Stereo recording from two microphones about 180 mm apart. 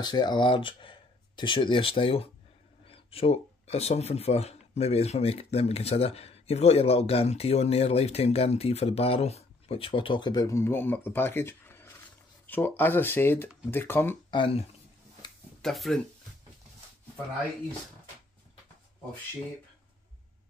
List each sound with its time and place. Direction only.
0.0 s speech: 25° left (ahead or behind)
14.3 s speech: 30° left (ahead or behind)
15.6 s speech: centre (ahead or behind)